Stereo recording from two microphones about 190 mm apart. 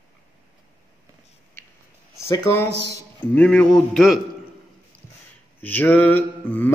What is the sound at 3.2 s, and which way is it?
Speech, 10° left (ahead or behind).